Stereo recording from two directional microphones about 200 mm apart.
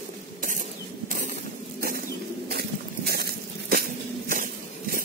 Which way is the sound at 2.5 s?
50° right (ahead or behind).